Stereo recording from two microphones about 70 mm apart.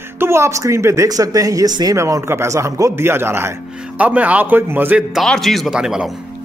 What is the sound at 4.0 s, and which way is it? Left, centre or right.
A man's voice, right.